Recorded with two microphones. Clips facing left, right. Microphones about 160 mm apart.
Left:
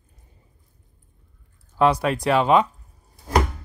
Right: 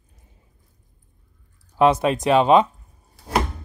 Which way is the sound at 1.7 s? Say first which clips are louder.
Right 2 dB; 20° right (ahead or behind).